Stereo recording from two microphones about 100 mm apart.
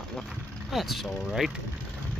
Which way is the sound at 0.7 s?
Centre (ahead or behind).